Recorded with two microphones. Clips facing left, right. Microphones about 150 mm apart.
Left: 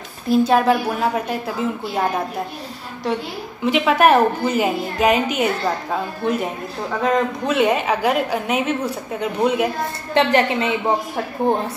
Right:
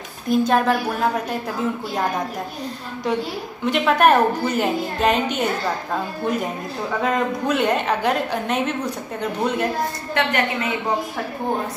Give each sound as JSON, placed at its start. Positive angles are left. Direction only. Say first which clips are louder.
{"t": 0.3, "sound": "a woman's voice", "louder": "left 3 dB", "side_deg": 5}
{"t": 3.6, "sound": "a woman's voice", "louder": "left 1 dB", "side_deg": 5}
{"t": 10.1, "sound": "a woman's voice", "louder": "left 6 dB", "side_deg": 30}